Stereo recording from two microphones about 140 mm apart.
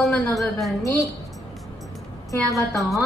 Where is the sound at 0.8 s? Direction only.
25° left (ahead or behind).